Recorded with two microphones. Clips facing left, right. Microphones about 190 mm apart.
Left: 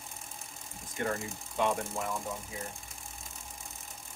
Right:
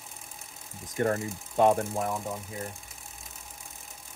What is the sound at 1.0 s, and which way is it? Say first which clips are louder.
Speech: right 7 dB; 40° right (ahead or behind).